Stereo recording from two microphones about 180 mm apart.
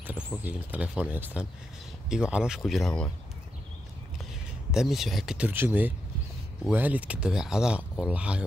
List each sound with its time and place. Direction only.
0.4 s speech: 10° right (ahead or behind)
4.6 s speech: centre (ahead or behind)